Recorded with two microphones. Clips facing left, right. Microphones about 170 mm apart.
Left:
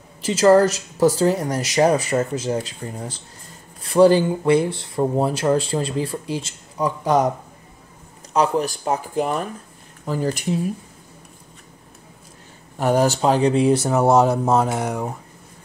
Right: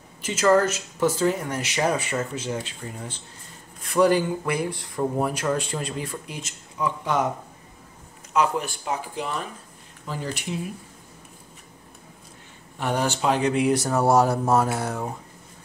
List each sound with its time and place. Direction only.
0.2 s speech: 35° left (ahead or behind)
8.3 s speech: 35° left (ahead or behind)
12.7 s speech: 40° left (ahead or behind); by 15.1 s 15° left (ahead or behind)